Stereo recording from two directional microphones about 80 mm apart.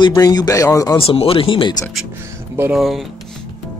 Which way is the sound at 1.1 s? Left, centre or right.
Left.